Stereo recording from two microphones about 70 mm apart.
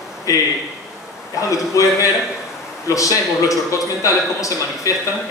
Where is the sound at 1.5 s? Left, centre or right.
Left.